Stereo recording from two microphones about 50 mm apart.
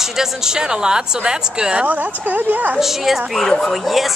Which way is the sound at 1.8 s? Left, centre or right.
Right.